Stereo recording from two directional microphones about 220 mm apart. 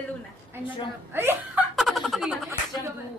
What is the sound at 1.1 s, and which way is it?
Speech, 10° right (ahead or behind).